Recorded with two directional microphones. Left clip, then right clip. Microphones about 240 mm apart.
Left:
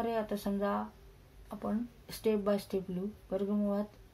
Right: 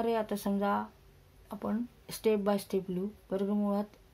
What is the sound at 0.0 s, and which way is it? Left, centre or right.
Speech, right.